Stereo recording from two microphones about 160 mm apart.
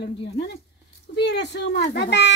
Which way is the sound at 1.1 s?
90° left.